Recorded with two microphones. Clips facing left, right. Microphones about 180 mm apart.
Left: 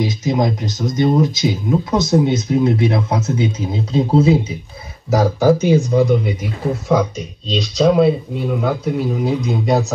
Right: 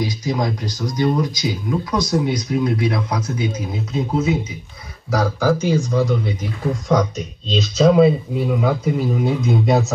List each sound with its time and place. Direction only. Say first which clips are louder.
0.0 s speech: left 4 dB; 20° left (ahead or behind); by 9.9 s centre (ahead or behind)